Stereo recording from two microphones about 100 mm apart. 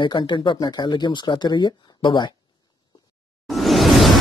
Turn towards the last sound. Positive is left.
turn(degrees=0)  # may be behind; listen again after turning